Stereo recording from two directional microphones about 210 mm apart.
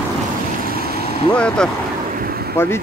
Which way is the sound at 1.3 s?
5° left (ahead or behind).